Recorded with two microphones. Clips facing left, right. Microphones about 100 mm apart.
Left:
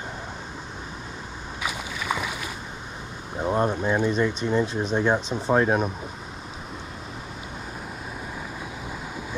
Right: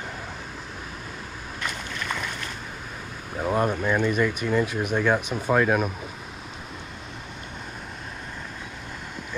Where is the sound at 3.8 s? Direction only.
20° left (ahead or behind).